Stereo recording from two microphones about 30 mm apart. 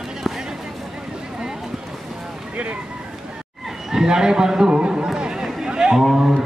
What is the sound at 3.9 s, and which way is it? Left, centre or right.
A man's voice, centre.